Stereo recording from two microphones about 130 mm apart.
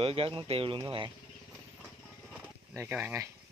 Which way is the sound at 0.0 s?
45° right (ahead or behind).